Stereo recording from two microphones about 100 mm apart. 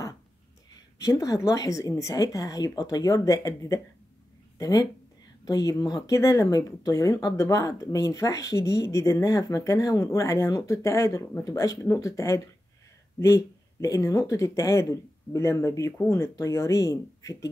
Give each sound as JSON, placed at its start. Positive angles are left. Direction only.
{"t": 0.7, "sound": "speech", "side_deg": 35}